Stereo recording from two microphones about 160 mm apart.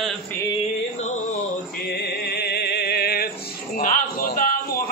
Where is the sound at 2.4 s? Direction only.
90° left.